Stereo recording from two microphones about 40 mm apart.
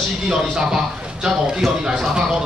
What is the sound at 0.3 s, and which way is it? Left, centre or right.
A man's voice, centre.